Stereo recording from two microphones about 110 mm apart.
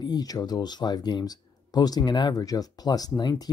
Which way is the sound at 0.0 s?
35° left (ahead or behind).